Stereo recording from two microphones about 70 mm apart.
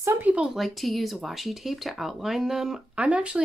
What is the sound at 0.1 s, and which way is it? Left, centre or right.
Speech, right.